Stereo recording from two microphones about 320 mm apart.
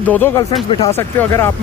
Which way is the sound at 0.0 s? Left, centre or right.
Centre.